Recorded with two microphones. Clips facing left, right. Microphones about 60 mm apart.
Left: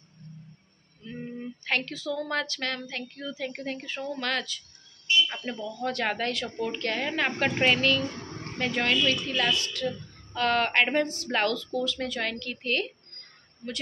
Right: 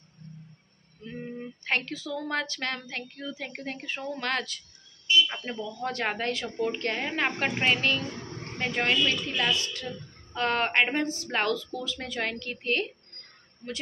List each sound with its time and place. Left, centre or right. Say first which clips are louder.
1.6 s a woman's voice: even; right